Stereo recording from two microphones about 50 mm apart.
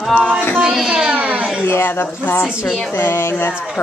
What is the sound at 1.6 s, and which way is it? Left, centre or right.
Speech, left.